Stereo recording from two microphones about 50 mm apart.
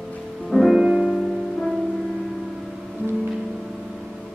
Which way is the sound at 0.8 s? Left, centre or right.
Centre.